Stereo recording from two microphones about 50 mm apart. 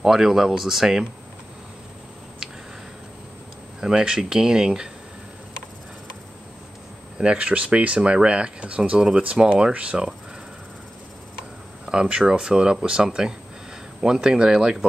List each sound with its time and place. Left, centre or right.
0.0 s speech: centre
3.8 s speech: centre
7.2 s speech: right
11.8 s speech: centre